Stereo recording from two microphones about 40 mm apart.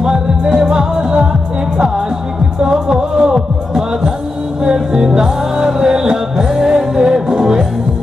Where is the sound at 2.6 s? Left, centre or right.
Centre.